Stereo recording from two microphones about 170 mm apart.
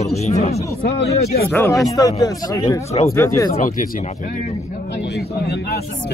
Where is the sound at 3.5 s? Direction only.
50° left (ahead or behind).